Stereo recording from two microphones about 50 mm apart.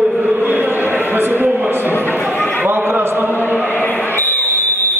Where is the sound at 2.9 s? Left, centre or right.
Right.